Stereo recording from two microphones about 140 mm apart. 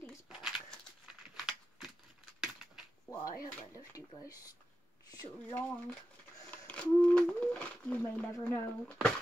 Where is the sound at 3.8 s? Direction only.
25° left (ahead or behind).